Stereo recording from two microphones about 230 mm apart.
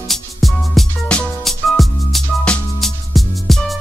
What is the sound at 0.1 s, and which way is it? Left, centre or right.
Music, centre.